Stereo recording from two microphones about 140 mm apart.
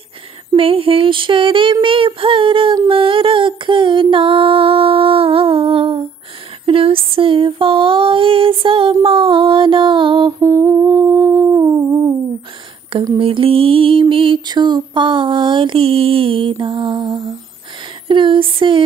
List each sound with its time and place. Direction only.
0.6 s child singing: 40° right (ahead or behind)
6.6 s female singing: 40° right (ahead or behind)
9.0 s a sound: 40° right (ahead or behind)
10.4 s humming: 20° right (ahead or behind)
13.2 s music: 40° right (ahead or behind)
18.0 s a sound: 35° right (ahead or behind)